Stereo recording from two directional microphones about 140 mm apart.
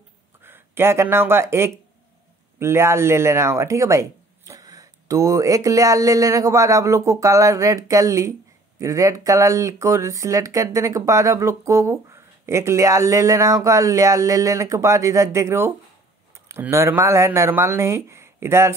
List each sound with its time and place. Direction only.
0.4 s speech: 15° right (ahead or behind)